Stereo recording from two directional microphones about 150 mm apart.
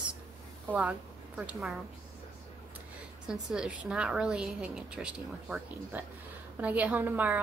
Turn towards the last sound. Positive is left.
turn(degrees=-10)  # may be behind; listen again after turning